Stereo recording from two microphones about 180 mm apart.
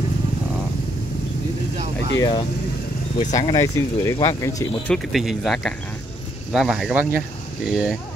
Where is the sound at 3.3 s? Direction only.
20° left (ahead or behind).